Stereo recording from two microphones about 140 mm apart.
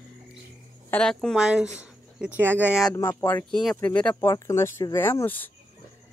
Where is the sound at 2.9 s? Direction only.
25° left (ahead or behind).